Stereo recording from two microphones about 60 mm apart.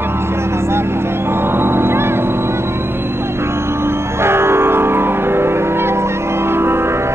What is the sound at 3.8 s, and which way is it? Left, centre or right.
Music, right.